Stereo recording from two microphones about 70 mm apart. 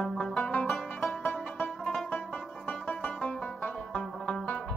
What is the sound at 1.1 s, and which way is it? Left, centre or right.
Music, left.